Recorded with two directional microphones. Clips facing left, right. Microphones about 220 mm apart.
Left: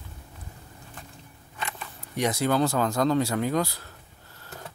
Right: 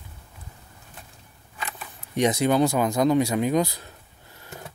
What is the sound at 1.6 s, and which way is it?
Camera, 5° right (ahead or behind).